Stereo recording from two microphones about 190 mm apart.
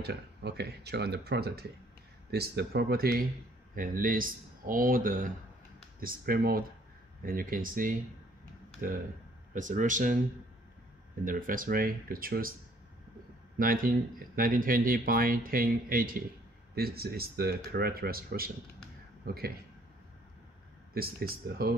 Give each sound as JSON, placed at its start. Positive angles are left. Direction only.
{"t": 0.0, "sound": "speech", "side_deg": -60}
{"t": 9.5, "sound": "speech", "side_deg": -40}
{"t": 11.2, "sound": "speech", "side_deg": -45}
{"t": 13.6, "sound": "speech", "side_deg": -50}
{"t": 20.9, "sound": "speech", "side_deg": -50}